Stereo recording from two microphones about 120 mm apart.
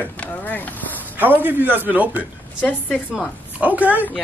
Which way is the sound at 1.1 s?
15° right (ahead or behind).